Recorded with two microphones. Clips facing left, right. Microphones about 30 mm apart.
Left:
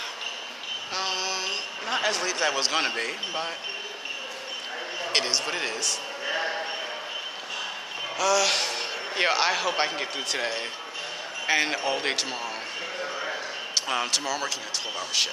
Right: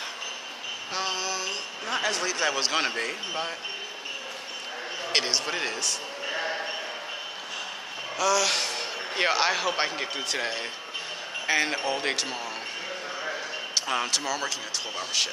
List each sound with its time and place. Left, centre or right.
0.9 s a sound: centre
2.0 s speech: centre
5.1 s speech: centre
8.2 s a man's voice: centre
13.8 s speech: centre